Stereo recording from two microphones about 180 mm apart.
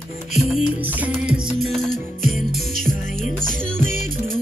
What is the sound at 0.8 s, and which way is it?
Music, 5° right (ahead or behind).